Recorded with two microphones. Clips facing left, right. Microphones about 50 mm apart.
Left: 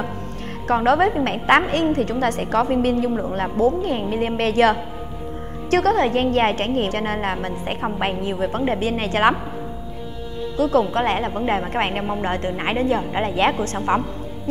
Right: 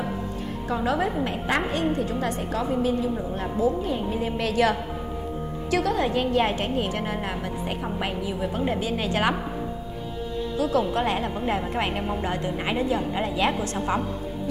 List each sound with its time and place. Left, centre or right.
0.7 s a woman's voice: left
3.2 s a woman's voice: left
10.6 s a woman's voice: left